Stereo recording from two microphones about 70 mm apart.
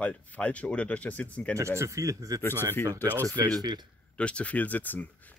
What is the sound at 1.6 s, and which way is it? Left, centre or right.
Speech, right.